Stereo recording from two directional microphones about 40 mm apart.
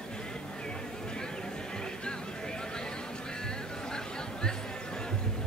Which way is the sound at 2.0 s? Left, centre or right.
Left.